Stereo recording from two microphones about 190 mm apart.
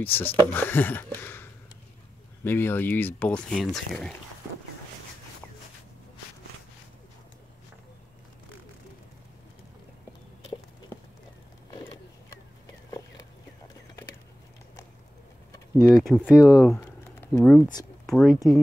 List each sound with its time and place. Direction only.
0.0 s speech: 10° left (ahead or behind)
11.7 s vehicle: 20° left (ahead or behind)
15.8 s speech: centre (ahead or behind)